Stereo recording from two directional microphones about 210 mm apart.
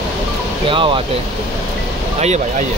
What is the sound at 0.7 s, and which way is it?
Speech, 25° right (ahead or behind).